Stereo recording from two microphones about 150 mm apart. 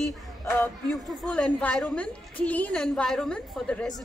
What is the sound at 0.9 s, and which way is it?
A woman's voice, centre (ahead or behind).